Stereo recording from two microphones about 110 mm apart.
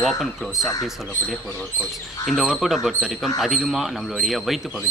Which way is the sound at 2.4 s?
Centre (ahead or behind).